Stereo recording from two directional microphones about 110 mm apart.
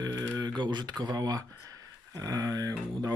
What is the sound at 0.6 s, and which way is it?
Speech, 45° right (ahead or behind).